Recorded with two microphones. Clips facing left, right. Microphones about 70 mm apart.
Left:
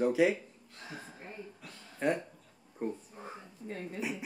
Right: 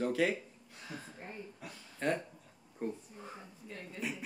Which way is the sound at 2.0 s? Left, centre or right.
Centre.